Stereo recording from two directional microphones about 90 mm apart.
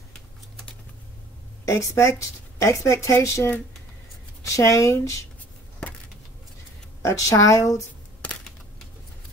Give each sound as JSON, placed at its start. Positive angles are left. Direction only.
{"t": 1.7, "sound": "speech", "side_deg": 35}
{"t": 7.0, "sound": "speech", "side_deg": 35}